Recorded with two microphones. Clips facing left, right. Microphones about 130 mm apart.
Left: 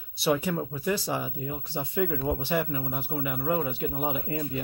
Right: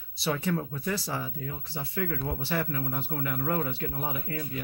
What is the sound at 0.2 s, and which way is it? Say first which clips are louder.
Speech: left 3 dB; 15° left (ahead or behind).